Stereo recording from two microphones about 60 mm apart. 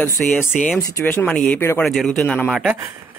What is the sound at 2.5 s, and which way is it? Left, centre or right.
Speech, centre.